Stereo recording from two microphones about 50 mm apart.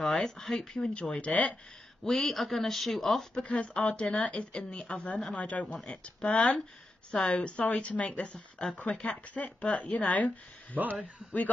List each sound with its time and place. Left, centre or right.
0.0 s speech: centre
0.7 s speech: left
2.0 s speech: centre
3.3 s a woman's voice: left
7.3 s speech: left